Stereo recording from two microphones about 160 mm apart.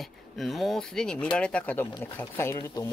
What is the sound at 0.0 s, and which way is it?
Speech, centre (ahead or behind).